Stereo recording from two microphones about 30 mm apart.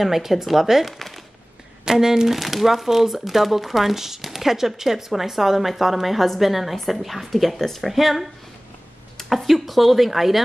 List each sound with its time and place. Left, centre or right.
0.0 s speech: centre
0.9 s a sound: centre
1.9 s a woman's voice: centre